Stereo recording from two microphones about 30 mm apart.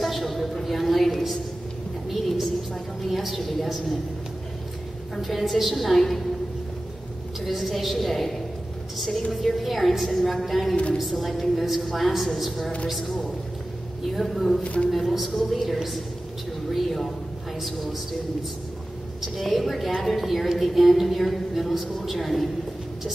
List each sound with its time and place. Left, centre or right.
0.0 s a sound: centre
3.6 s a woman's voice: centre
5.2 s a woman's voice: centre
7.4 s a woman's voice: centre
14.1 s a woman's voice: centre
14.6 s speech: left
14.9 s a woman's voice: centre
19.3 s a woman's voice: centre